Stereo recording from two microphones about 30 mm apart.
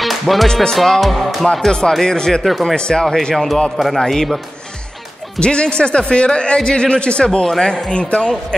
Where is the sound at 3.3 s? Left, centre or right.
Centre.